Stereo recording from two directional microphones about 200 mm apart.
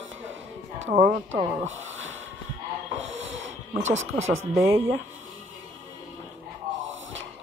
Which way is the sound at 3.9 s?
80° right.